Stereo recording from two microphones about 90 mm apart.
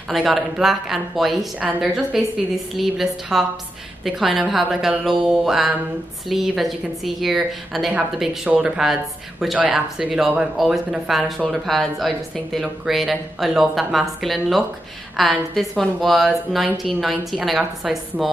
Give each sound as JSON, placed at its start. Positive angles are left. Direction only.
{"t": 0.1, "sound": "speech", "side_deg": 0}
{"t": 8.5, "sound": "speech", "side_deg": -10}